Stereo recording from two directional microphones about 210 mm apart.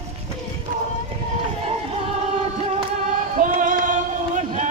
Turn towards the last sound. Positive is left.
turn(degrees=-35)  # may be behind; listen again after turning